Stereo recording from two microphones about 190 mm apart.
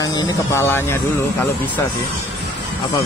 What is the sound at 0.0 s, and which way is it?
Speech, 15° left (ahead or behind).